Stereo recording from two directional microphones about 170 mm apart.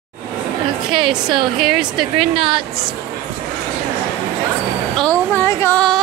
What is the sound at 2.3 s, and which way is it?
Speech, 30° right (ahead or behind).